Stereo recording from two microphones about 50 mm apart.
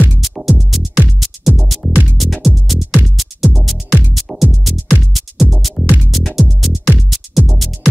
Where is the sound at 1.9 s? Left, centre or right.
Right.